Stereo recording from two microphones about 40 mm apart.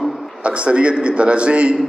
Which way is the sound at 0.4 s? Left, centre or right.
Right.